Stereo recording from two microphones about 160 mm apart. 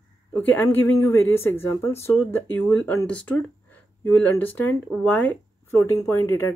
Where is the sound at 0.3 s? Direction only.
10° left (ahead or behind).